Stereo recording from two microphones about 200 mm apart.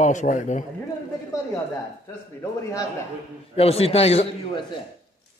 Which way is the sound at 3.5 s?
30° left (ahead or behind).